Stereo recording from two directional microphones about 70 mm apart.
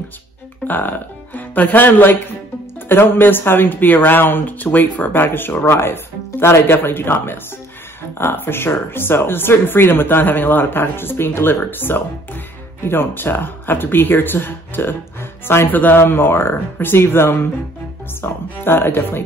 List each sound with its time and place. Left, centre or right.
0.7 s a man's voice: left